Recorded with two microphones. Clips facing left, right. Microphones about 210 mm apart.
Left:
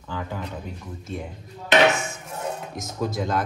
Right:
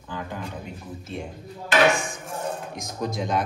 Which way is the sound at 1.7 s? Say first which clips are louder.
Left 1 dB; 25° left (ahead or behind).